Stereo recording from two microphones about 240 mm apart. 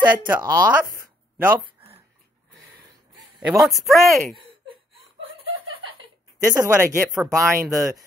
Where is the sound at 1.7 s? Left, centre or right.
Right.